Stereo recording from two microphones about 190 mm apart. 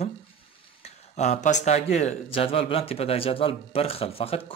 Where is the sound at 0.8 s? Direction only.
35° left (ahead or behind).